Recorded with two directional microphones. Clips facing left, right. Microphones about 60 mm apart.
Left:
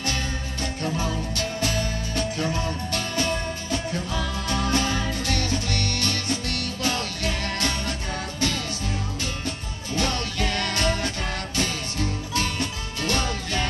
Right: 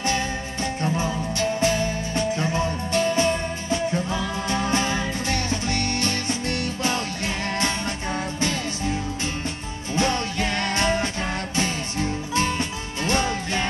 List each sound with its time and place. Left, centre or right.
0.9 s music: right
9.9 s music: right
13.0 s music: right